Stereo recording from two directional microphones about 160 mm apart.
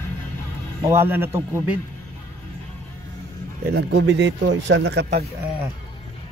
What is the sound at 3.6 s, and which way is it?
A man's voice, 90° right.